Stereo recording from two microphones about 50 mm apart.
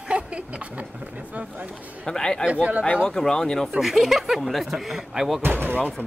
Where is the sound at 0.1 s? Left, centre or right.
Right.